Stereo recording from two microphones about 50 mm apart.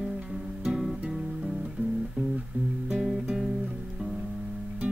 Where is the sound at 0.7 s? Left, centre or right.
Centre.